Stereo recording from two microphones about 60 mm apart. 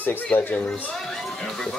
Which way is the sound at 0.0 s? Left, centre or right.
Left.